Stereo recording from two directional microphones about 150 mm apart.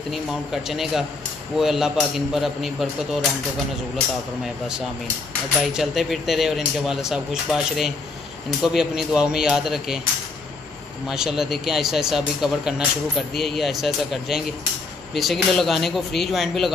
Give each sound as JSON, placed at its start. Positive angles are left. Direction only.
{"t": 0.1, "sound": "speech", "side_deg": 0}
{"t": 5.6, "sound": "speech", "side_deg": 0}
{"t": 11.1, "sound": "speech", "side_deg": -5}